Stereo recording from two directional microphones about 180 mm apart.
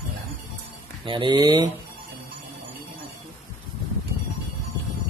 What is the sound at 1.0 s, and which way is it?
Speech, 25° right (ahead or behind).